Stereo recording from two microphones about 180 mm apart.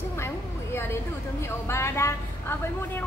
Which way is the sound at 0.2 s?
15° left (ahead or behind).